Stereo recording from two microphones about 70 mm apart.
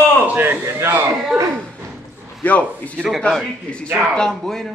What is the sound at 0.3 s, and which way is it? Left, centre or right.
Speech, right.